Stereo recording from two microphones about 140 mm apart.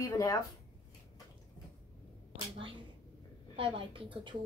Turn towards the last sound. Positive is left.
turn(degrees=-35)  # may be behind; listen again after turning